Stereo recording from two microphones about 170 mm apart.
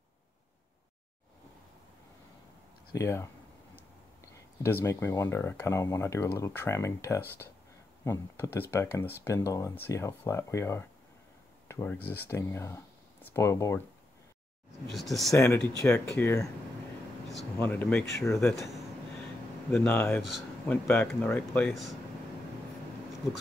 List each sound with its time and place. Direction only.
2.9 s speech: 15° left (ahead or behind)
4.6 s speech: 15° left (ahead or behind)
14.9 s speech: centre (ahead or behind)
15.3 s speech: 15° left (ahead or behind)
17.6 s speech: 10° left (ahead or behind)
18.4 s speech: centre (ahead or behind)
19.7 s speech: 10° left (ahead or behind)
20.2 s speech: centre (ahead or behind)